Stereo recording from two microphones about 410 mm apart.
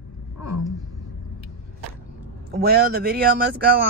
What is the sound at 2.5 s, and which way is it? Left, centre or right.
Speech, right.